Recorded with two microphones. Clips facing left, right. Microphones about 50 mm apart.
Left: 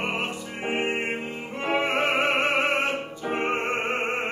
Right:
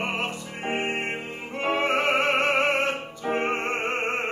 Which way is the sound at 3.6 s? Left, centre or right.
Centre.